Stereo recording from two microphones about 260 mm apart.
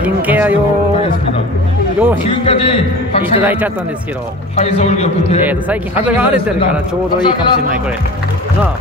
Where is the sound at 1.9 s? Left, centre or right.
Centre.